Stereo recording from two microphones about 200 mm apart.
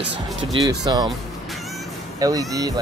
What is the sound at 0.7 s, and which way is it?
Speech, 20° right (ahead or behind).